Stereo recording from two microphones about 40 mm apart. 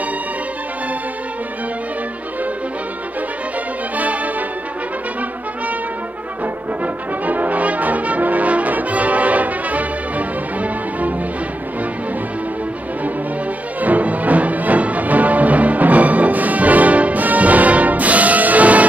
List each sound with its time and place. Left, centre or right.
3.9 s music: right
6.4 s brass instrument: right
13.7 s music: right